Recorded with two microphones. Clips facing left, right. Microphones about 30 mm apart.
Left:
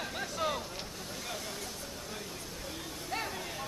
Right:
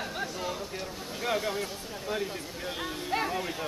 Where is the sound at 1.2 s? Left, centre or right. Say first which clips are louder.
Right 13 dB; right.